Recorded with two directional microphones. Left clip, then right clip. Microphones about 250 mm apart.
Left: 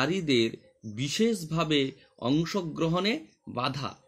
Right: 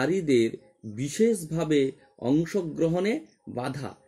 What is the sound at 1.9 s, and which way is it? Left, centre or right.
Speech, centre.